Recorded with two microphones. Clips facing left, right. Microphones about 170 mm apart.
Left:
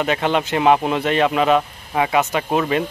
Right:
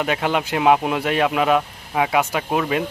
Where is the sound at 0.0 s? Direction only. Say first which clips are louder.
Left 2 dB; 5° right (ahead or behind).